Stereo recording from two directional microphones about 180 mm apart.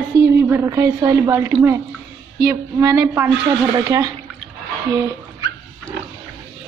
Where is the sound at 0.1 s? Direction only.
20° right (ahead or behind).